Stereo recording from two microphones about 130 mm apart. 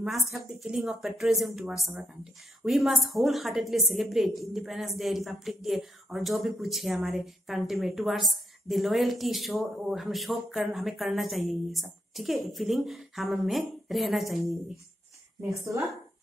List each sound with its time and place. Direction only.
0.3 s a woman's voice: centre (ahead or behind)
15.4 s a woman's voice: 25° right (ahead or behind)